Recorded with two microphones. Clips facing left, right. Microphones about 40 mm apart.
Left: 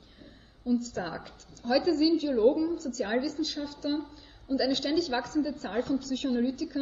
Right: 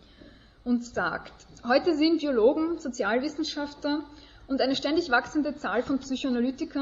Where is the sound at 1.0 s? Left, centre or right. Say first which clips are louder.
Right 6 dB; right.